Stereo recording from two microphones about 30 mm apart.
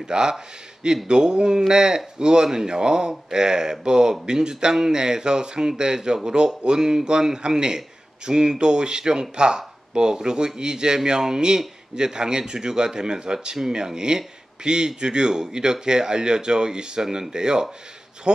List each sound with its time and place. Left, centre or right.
0.0 s speech: right